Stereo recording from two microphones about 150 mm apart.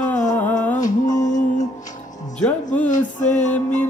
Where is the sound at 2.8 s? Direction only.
55° left (ahead or behind).